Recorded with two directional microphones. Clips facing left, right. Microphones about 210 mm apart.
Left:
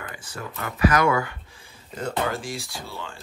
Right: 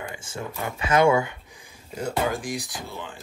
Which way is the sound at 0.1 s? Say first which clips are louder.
Right 2 dB; 25° right (ahead or behind).